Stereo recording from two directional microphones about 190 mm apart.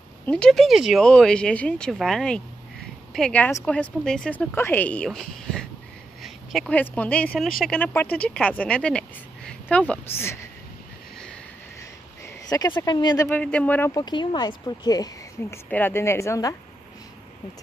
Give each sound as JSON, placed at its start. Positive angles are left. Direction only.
{"t": 0.3, "sound": "speech", "side_deg": 5}
{"t": 12.4, "sound": "speech", "side_deg": 20}
{"t": 13.3, "sound": "speech", "side_deg": 5}